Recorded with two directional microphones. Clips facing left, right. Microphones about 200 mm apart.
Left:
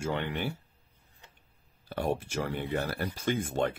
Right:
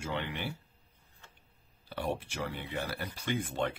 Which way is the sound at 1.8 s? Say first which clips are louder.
Left 4 dB; 45° left (ahead or behind).